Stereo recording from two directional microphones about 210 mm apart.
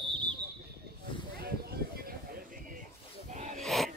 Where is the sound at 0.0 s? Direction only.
25° right (ahead or behind).